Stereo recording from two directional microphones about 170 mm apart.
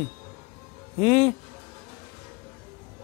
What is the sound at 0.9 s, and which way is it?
Speech, 35° left (ahead or behind).